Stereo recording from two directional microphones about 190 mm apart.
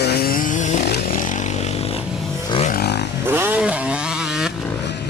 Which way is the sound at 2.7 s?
55° left (ahead or behind).